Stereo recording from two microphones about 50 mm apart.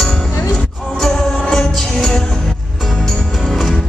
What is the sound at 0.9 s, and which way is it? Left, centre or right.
Music, centre.